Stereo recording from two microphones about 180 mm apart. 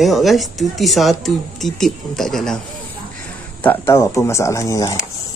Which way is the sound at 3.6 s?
10° left (ahead or behind).